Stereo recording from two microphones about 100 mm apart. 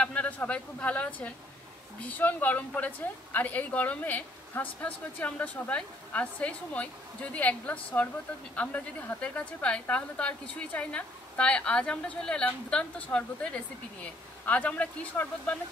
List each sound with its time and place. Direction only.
0.0 s a woman's voice: 15° left (ahead or behind)